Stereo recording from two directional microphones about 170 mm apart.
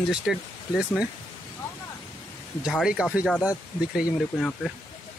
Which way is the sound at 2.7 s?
Centre (ahead or behind).